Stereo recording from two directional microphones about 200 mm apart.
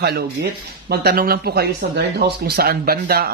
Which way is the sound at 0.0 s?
55° right (ahead or behind).